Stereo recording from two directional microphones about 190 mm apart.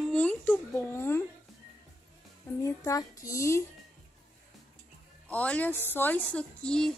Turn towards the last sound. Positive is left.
turn(degrees=5)  # may be behind; listen again after turning